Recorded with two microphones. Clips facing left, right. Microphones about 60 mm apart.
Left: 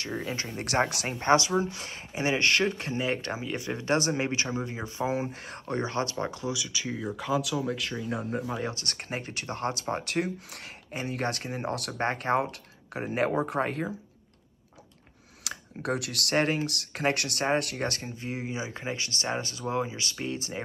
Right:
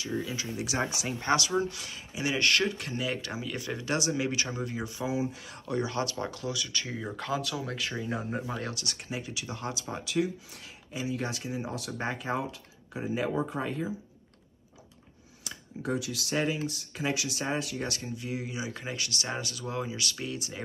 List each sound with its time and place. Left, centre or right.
0.1 s speech: left
1.2 s speech: left
5.1 s speech: left
6.6 s speech: centre
8.7 s speech: left
15.4 s speech: left